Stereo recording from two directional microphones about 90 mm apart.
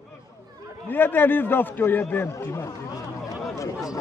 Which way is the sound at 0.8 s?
20° left (ahead or behind).